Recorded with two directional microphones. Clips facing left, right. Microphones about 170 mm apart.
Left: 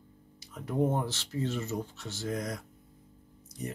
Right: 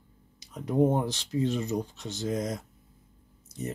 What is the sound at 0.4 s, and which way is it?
Speech, 20° right (ahead or behind).